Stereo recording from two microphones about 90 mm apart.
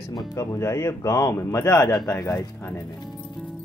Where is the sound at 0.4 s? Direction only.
35° left (ahead or behind).